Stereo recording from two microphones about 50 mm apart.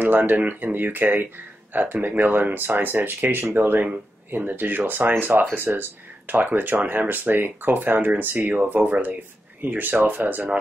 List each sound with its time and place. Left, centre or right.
0.0 s speech: right
8.8 s speech: right